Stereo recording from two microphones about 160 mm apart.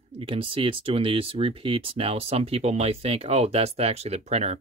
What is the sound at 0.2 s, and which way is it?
Speech, 35° right (ahead or behind).